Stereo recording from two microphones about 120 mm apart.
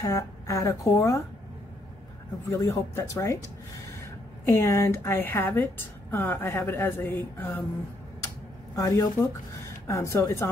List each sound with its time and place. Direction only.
0.0 s a woman's voice: 25° left (ahead or behind)
2.5 s a woman's voice: 25° left (ahead or behind)
4.6 s a woman's voice: 20° left (ahead or behind)
8.7 s a woman's voice: 30° left (ahead or behind)